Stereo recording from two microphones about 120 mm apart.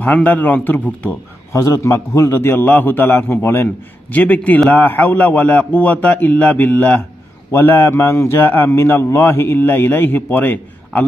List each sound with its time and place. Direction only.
0.0 s a man's voice: 15° left (ahead or behind)
1.5 s a man's voice: 25° left (ahead or behind)